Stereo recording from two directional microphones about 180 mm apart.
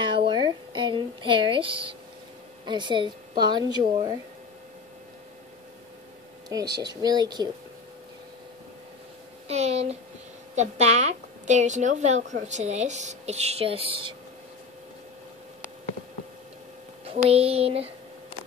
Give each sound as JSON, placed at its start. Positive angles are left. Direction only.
{"t": 0.0, "sound": "a sound", "side_deg": -30}
{"t": 2.6, "sound": "speech", "side_deg": -25}
{"t": 6.5, "sound": "speech", "side_deg": -20}
{"t": 9.5, "sound": "speech", "side_deg": -35}
{"t": 17.0, "sound": "speech", "side_deg": -35}